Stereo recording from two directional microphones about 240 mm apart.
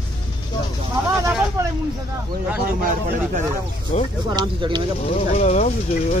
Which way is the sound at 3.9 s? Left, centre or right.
Left.